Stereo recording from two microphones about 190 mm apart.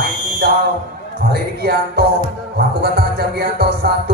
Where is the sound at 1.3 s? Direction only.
55° right (ahead or behind).